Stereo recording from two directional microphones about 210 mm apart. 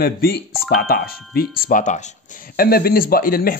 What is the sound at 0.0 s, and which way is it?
Speech, 45° left (ahead or behind).